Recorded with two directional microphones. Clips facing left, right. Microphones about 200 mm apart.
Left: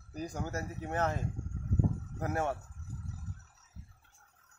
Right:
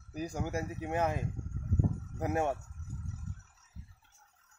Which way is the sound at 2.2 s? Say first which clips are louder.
Right 2 dB; 15° right (ahead or behind).